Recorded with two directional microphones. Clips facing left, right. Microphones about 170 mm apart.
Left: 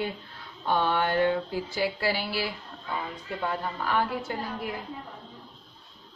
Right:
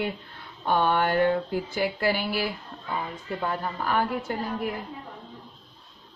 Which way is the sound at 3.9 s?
50° right (ahead or behind).